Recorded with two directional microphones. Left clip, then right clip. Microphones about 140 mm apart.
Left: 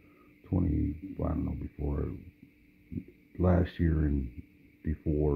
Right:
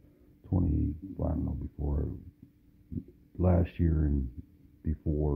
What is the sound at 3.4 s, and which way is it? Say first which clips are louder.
Speech: left 1 dB; 15° right (ahead or behind).